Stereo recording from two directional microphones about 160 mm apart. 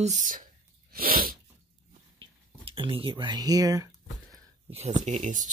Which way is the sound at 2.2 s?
35° right (ahead or behind).